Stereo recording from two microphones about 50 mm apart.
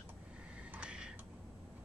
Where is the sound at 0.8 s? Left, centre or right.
Centre.